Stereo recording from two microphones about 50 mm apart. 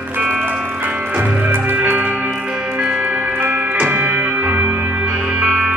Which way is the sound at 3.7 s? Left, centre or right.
Right.